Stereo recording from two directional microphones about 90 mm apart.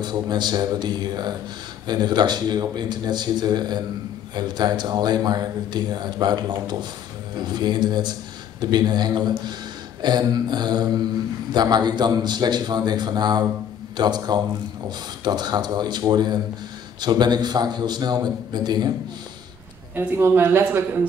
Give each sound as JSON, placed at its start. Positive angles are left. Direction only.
{"t": 0.0, "sound": "a man's voice", "side_deg": -50}
{"t": 20.0, "sound": "speech", "side_deg": -25}